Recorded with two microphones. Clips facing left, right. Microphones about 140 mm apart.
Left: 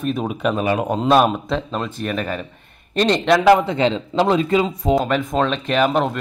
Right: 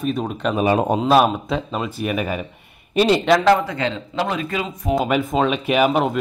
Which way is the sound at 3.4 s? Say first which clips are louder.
Left 3 dB; 20° left (ahead or behind).